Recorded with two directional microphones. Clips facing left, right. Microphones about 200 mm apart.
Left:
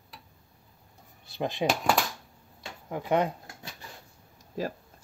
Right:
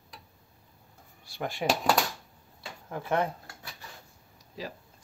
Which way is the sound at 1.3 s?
20° left (ahead or behind).